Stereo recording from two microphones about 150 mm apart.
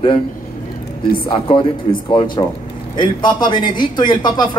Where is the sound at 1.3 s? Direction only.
35° left (ahead or behind).